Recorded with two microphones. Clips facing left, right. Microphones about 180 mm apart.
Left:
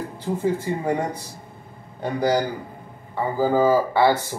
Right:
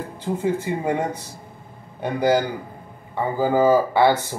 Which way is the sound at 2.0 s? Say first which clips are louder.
Right 2 dB; 15° right (ahead or behind).